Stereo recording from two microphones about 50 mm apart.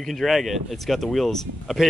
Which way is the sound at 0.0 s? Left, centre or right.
Centre.